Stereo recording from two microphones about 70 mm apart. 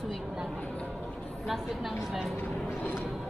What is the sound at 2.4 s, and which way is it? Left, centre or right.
Vehicle, left.